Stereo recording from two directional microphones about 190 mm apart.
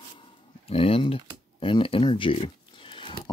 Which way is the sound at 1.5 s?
30° left (ahead or behind).